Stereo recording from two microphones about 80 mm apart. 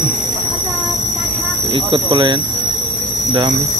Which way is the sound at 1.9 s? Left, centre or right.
Right.